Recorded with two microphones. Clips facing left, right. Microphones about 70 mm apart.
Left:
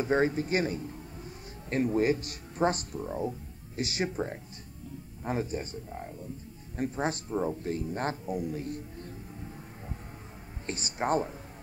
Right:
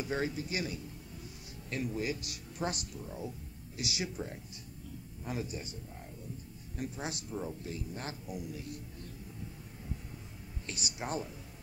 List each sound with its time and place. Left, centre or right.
0.0 s speech: left
10.7 s speech: left